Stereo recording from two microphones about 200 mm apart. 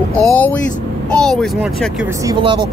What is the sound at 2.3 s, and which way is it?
Speech, 25° right (ahead or behind).